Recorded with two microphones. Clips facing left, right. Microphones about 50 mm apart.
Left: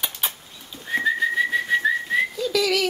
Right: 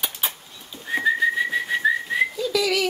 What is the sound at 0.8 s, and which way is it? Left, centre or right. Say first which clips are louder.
Whistling: right 1 dB; centre.